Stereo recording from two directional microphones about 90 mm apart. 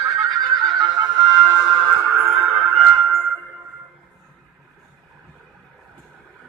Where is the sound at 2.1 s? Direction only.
Centre (ahead or behind).